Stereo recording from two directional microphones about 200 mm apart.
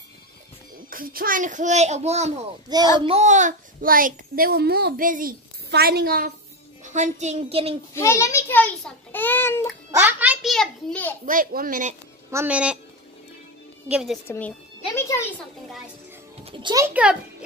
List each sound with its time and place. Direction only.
0.8 s a child's voice: 45° right (ahead or behind)
2.7 s a child's voice: 20° right (ahead or behind)
3.1 s a child's voice: 35° right (ahead or behind)
6.8 s a child's voice: 35° right (ahead or behind)
7.9 s a child's voice: 15° left (ahead or behind)
9.8 s a sound: 10° right (ahead or behind)
11.2 s a child's voice: 45° right (ahead or behind)
12.3 s a child's voice: 10° right (ahead or behind)
13.8 s a woman's voice: 5° right (ahead or behind)
14.2 s a child's voice: 10° left (ahead or behind)
16.4 s a child's voice: 25° right (ahead or behind); by 17.2 s 5° right (ahead or behind)